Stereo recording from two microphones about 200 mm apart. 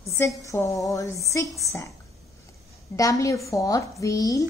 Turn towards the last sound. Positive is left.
turn(degrees=15)  # may be behind; listen again after turning